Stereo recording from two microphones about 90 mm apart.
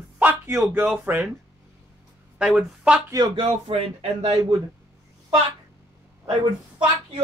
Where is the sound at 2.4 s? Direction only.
10° right (ahead or behind).